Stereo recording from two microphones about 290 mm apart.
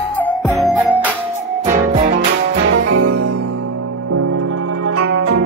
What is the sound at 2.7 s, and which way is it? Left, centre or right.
Music, right.